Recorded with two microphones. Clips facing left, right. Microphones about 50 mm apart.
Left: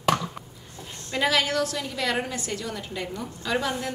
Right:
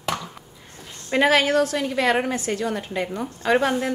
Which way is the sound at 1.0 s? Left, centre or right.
Right.